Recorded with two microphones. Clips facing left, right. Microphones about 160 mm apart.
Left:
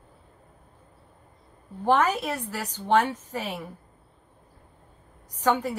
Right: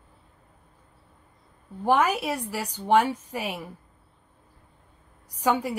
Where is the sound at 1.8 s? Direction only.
10° right (ahead or behind).